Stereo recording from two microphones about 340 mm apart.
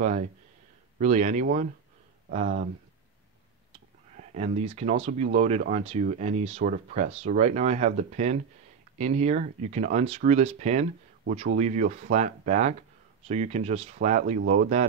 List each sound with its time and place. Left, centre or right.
0.0 s speech: right
4.2 s speech: centre